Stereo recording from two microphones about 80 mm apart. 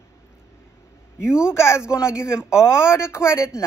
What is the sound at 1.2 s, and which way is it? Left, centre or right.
A man's voice, left.